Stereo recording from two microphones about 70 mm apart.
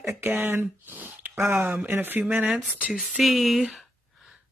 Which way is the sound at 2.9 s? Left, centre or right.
Centre.